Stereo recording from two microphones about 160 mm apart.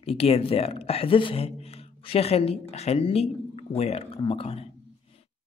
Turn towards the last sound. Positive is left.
turn(degrees=35)  # may be behind; listen again after turning